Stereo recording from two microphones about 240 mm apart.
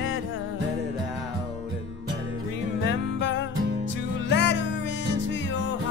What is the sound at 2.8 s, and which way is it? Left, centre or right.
Music, left.